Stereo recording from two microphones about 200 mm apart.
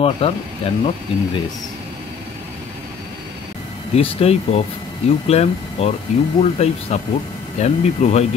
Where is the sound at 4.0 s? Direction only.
30° left (ahead or behind).